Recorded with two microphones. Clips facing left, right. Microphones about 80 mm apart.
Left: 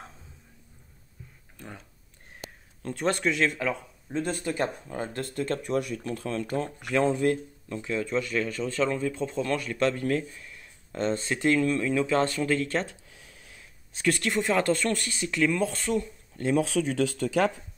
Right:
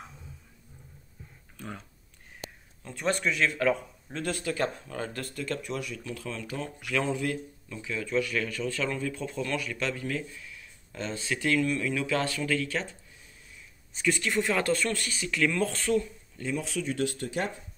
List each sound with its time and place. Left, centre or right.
2.8 s speech: left
3.2 s speech: left
4.1 s speech: left
12.8 s a sound: left
14.0 s speech: left
14.4 s speech: left
16.8 s speech: left